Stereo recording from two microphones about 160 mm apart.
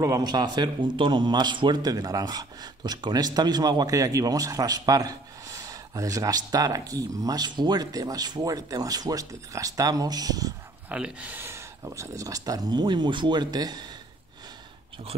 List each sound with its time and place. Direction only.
0.0 s speech: 25° right (ahead or behind)
10.9 s speech: 5° right (ahead or behind); by 13.8 s 25° right (ahead or behind)